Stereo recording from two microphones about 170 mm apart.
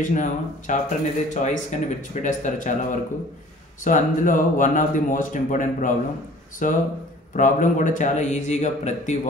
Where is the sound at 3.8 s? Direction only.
50° left (ahead or behind).